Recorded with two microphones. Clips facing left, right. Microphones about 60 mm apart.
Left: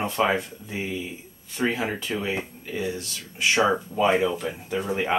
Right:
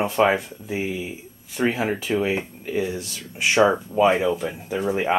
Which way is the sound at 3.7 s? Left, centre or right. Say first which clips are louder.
Right 3 dB; centre.